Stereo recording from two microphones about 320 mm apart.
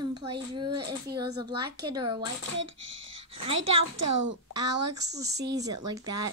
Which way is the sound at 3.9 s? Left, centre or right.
Right.